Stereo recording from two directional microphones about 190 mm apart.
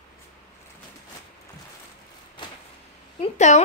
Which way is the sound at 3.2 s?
40° left (ahead or behind).